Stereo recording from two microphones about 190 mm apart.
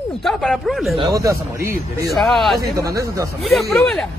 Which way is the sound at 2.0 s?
Centre (ahead or behind).